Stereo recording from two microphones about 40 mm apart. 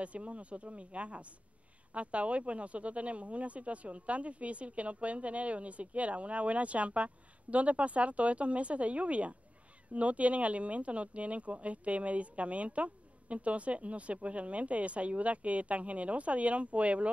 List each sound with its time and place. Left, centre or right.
0.0 s speech: right